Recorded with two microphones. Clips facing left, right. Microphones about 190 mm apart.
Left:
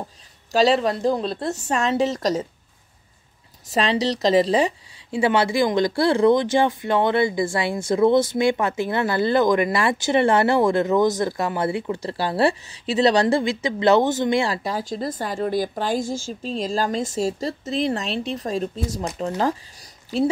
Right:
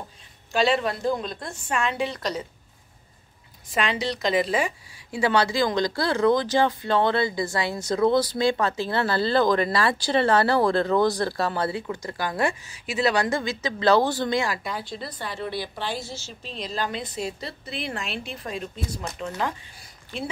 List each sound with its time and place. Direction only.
0.5 s speech: 35° left (ahead or behind)
3.7 s speech: 35° left (ahead or behind)
5.1 s speech: 20° left (ahead or behind); by 20.2 s 40° left (ahead or behind)